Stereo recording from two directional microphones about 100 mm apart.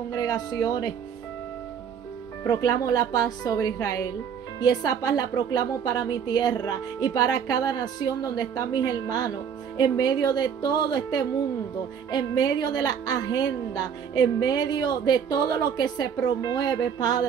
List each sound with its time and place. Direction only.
0.1 s a woman's voice: 40° left (ahead or behind)
2.5 s a woman's voice: 35° left (ahead or behind)